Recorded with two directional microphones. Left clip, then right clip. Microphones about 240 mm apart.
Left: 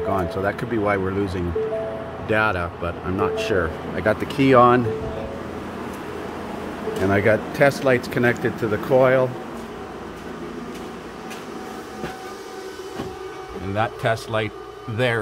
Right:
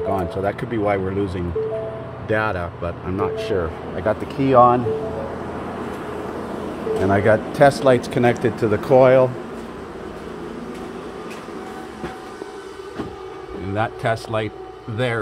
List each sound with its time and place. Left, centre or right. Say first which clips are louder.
0.1 s speech: left 1 dB; centre
7.1 s speech: right 2 dB; centre
7.5 s speech: right 4 dB; centre
13.7 s speech: even; centre